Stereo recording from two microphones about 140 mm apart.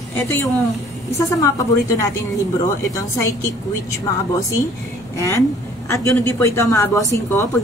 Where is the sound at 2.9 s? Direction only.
20° left (ahead or behind).